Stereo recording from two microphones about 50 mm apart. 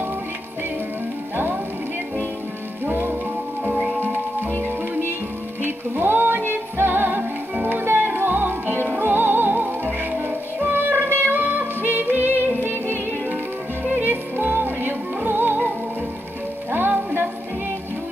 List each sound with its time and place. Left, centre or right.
1.3 s music: right
2.8 s music: right
5.6 s music: right
16.7 s music: right